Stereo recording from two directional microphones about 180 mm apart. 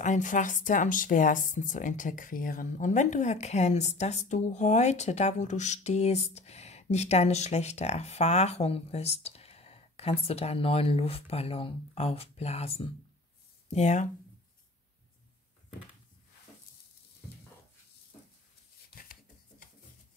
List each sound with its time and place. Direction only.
0.0 s speech: 45° left (ahead or behind)